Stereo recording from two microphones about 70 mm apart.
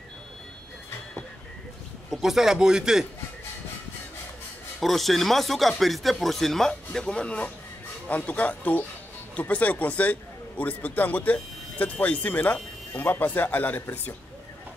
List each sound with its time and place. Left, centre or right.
2.0 s a man's voice: centre
4.7 s speech: centre; by 13.8 s left